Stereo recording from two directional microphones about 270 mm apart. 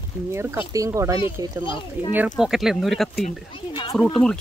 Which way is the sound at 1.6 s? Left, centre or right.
Centre.